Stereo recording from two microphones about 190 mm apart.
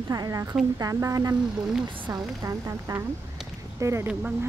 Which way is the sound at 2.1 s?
15° right (ahead or behind).